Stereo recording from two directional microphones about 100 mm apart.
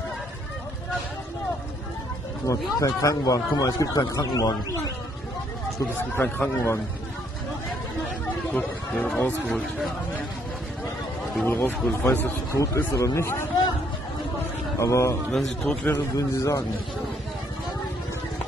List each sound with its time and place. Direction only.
2.4 s a man's voice: 35° left (ahead or behind)
6.1 s speech: 20° left (ahead or behind)
8.9 s a man's voice: 5° left (ahead or behind)
11.4 s speech: 20° left (ahead or behind)
12.5 s speech: 30° left (ahead or behind)
14.8 s a man's voice: 30° left (ahead or behind)
15.3 s a man's voice: 5° left (ahead or behind)
15.9 s a man's voice: 30° left (ahead or behind)